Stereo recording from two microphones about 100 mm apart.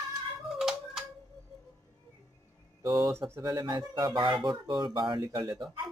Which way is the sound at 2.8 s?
35° right (ahead or behind).